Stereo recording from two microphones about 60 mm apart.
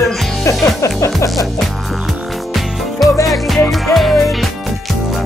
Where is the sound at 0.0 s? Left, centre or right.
Centre.